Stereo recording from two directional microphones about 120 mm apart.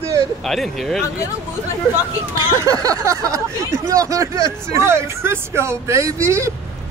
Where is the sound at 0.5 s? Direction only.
Centre (ahead or behind).